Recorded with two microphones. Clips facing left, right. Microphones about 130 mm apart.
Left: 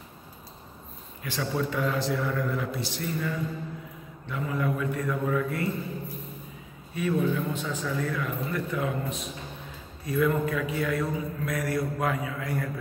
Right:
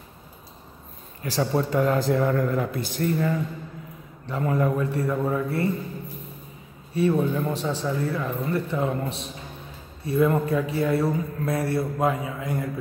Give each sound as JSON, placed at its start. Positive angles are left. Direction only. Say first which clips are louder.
{"t": 1.2, "sound": "a man's voice", "louder": "right 5 dB", "side_deg": -35}
{"t": 6.9, "sound": "a man's voice", "louder": "right 4 dB", "side_deg": -35}